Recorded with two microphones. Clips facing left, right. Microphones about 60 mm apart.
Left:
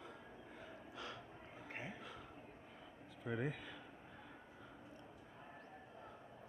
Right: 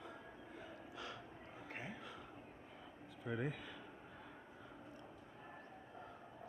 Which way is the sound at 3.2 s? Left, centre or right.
Centre.